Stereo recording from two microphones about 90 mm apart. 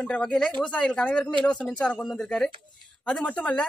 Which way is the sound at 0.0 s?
10° left (ahead or behind).